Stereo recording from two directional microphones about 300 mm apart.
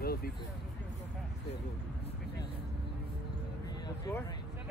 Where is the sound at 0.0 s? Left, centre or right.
Left.